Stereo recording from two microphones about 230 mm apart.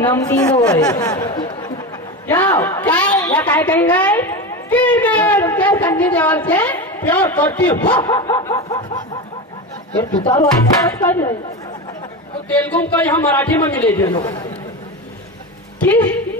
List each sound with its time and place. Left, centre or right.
0.0 s a woman's voice: centre
8.6 s speech: left
11.1 s a woman's voice: centre
12.4 s a woman's voice: centre
15.8 s a woman's voice: centre